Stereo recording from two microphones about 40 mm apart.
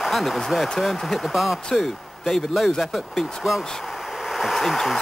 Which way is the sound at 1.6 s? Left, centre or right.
Centre.